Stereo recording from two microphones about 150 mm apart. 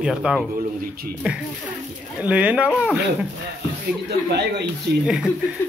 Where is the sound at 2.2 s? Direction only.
10° right (ahead or behind).